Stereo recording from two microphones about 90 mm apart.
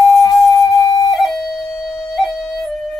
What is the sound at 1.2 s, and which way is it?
Flute, centre (ahead or behind).